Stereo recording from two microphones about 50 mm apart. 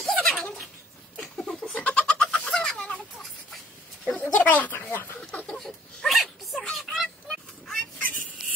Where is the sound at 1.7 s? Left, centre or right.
Left.